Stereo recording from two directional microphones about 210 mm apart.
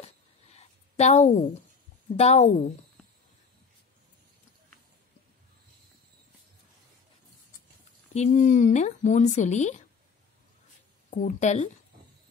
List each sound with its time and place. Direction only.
0.6 s a sound: 30° left (ahead or behind)
2.1 s speech: 30° left (ahead or behind)
8.1 s speech: 35° left (ahead or behind)
11.1 s speech: 35° left (ahead or behind)